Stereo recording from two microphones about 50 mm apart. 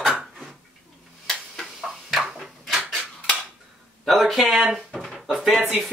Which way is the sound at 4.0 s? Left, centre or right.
Centre.